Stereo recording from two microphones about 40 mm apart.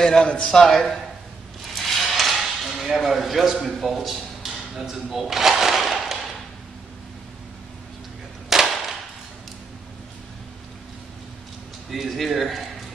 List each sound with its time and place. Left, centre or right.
0.0 s a man's voice: left
0.7 s a man's voice: centre
1.8 s a sound: centre
3.0 s a man's voice: centre
8.5 s a sound: centre
11.9 s a man's voice: centre